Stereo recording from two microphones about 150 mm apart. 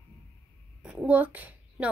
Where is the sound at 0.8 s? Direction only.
5° right (ahead or behind).